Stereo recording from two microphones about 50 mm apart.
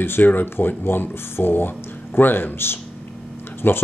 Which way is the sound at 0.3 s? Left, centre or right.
Left.